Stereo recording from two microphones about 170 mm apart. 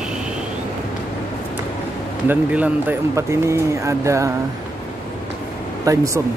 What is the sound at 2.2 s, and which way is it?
Speech, 10° right (ahead or behind).